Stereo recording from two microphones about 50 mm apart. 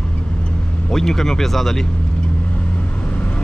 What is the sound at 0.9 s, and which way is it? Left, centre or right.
Speech, centre.